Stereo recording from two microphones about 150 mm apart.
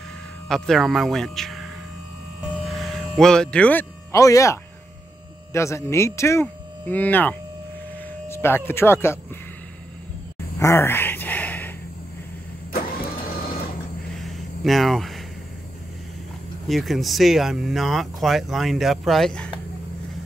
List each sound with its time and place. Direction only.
0.5 s speech: centre (ahead or behind)
2.4 s music: centre (ahead or behind)
4.1 s speech: 20° left (ahead or behind)
10.6 s a sound: 15° left (ahead or behind)
14.1 s a sound: centre (ahead or behind)
16.6 s speech: centre (ahead or behind)